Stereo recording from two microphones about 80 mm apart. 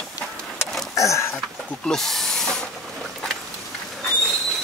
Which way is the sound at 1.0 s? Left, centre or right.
Left.